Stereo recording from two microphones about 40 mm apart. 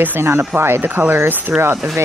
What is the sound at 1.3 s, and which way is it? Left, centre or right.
Speech, right.